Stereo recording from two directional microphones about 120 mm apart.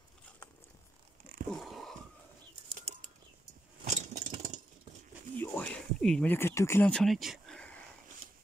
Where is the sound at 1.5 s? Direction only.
Centre (ahead or behind).